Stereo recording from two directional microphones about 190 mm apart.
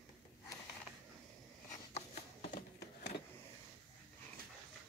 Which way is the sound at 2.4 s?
50° left (ahead or behind).